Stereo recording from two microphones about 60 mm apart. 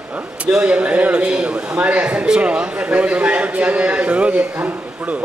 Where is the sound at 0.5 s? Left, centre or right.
Right.